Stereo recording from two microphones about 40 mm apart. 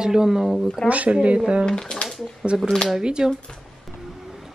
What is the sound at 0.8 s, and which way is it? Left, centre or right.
Speech, right.